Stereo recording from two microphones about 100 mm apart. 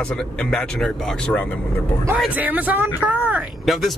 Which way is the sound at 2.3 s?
15° right (ahead or behind).